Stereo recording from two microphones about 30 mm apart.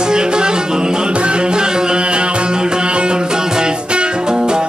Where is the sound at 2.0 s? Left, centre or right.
Right.